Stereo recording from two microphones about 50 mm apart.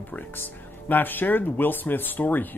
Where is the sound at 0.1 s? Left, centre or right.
Left.